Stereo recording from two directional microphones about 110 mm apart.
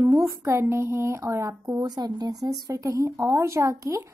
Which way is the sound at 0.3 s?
25° right (ahead or behind).